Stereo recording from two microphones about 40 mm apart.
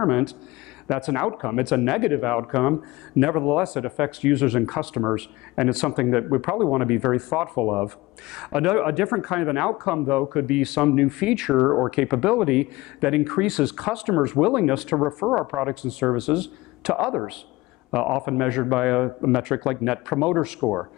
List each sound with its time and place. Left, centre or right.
0.0 s speech: centre